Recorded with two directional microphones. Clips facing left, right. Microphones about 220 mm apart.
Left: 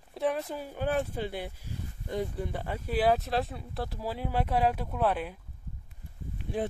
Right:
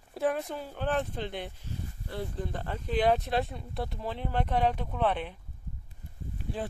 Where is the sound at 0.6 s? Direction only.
10° left (ahead or behind).